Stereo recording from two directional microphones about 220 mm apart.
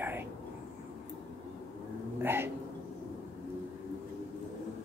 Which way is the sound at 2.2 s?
10° right (ahead or behind).